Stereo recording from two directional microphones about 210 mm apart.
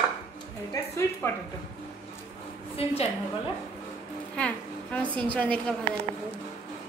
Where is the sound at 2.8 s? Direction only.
30° left (ahead or behind).